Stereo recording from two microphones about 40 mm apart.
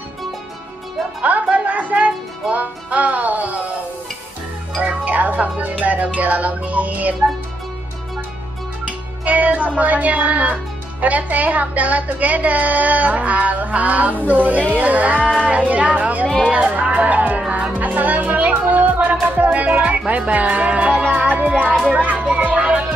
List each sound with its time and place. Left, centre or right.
1.2 s speech: right
4.8 s speech: right
9.2 s music: right
9.8 s speech: right
17.5 s music: right
17.7 s speech: right
21.1 s music: right